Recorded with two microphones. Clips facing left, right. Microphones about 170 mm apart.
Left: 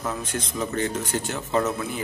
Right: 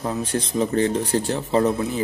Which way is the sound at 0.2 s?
30° right (ahead or behind).